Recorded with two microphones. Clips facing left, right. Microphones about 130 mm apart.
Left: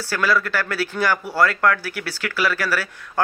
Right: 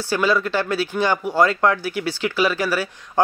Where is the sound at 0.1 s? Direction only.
20° right (ahead or behind).